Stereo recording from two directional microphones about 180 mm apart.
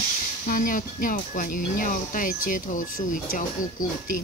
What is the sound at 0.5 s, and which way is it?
Speech, 50° left (ahead or behind).